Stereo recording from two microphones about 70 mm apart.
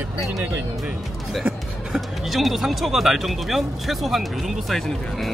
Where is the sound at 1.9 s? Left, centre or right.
Centre.